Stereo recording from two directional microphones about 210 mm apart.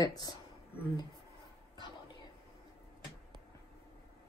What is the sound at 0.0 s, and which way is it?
Speech, 20° left (ahead or behind).